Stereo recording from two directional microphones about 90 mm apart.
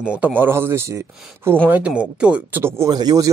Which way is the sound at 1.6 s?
15° right (ahead or behind).